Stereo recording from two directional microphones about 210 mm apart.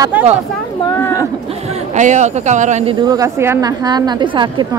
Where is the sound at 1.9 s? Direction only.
35° right (ahead or behind).